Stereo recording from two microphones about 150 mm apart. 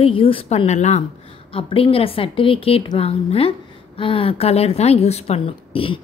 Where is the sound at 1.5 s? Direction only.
35° left (ahead or behind).